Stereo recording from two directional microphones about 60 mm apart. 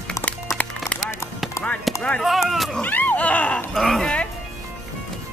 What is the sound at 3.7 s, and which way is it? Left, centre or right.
Speech, centre.